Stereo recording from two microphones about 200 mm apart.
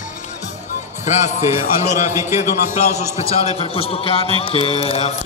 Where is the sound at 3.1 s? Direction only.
30° left (ahead or behind).